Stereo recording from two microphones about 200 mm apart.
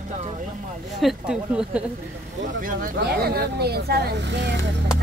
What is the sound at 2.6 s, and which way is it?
Speech, 45° right (ahead or behind).